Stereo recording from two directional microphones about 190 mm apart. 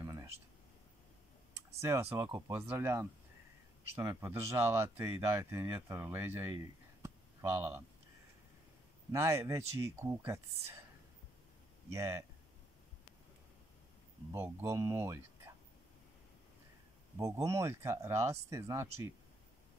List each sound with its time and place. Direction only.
0.0 s a sound: 15° right (ahead or behind)
1.5 s clicking: 15° right (ahead or behind)
2.1 s speech: 10° right (ahead or behind)
9.1 s speech: 15° right (ahead or behind)
11.9 s speech: 15° right (ahead or behind)
14.3 s speech: 15° right (ahead or behind)
17.2 s speech: 15° right (ahead or behind)